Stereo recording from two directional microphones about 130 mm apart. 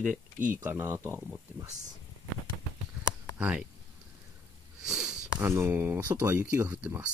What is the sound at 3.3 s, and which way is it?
Speech, 10° right (ahead or behind).